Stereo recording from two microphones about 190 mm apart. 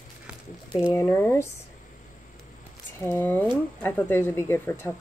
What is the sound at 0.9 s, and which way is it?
Speech, 15° left (ahead or behind).